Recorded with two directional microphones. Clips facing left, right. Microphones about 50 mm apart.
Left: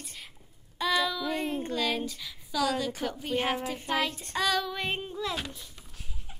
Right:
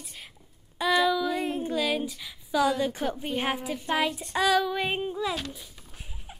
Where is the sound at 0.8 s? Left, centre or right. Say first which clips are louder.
Right 4 dB; centre.